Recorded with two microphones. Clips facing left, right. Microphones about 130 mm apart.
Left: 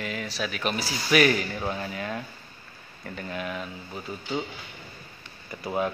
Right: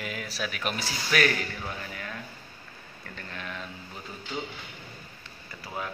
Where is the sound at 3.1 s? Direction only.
10° left (ahead or behind).